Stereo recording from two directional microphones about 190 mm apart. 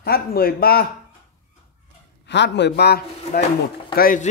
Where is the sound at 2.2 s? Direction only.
65° left (ahead or behind).